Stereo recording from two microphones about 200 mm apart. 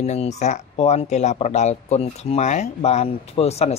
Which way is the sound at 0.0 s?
35° left (ahead or behind).